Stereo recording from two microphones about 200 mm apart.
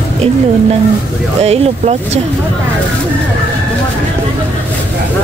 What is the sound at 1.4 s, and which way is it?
Speech, 30° right (ahead or behind).